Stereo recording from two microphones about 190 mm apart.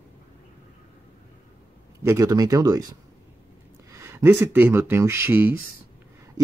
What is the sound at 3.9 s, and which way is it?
Speech, 15° right (ahead or behind).